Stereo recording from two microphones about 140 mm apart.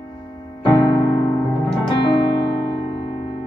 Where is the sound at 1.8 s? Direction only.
35° left (ahead or behind).